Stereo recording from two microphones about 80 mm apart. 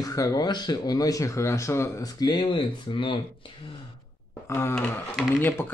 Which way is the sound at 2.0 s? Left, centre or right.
Left.